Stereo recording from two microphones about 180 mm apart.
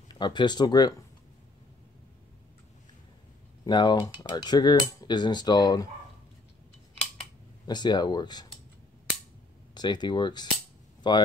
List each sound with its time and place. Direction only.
0.1 s cutlery: 25° left (ahead or behind)
3.6 s cutlery: 25° left (ahead or behind)
7.6 s cutlery: 25° left (ahead or behind)
9.8 s cutlery: 25° left (ahead or behind)
11.0 s speech: 25° left (ahead or behind)